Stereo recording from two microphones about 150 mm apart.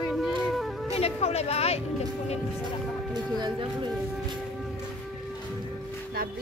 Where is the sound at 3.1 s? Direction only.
30° right (ahead or behind).